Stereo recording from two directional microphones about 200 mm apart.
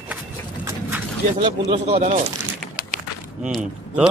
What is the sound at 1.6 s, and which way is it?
Speech, 30° right (ahead or behind).